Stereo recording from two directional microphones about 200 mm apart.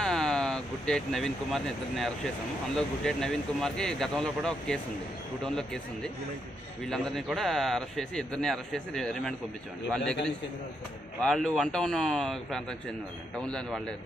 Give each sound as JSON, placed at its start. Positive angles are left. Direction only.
{"t": 0.0, "sound": "a man's voice", "side_deg": 0}
{"t": 6.9, "sound": "a man's voice", "side_deg": 0}
{"t": 11.2, "sound": "a man's voice", "side_deg": 5}